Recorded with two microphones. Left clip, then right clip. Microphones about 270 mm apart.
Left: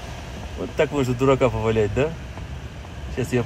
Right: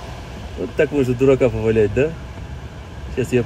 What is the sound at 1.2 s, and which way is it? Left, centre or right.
Speech, right.